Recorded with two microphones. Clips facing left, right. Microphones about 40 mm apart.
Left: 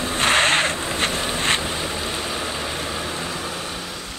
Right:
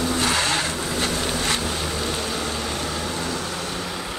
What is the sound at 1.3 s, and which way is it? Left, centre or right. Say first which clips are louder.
Vehicle: left 3 dB; left.